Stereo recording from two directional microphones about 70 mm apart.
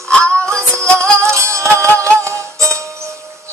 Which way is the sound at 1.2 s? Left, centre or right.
Right.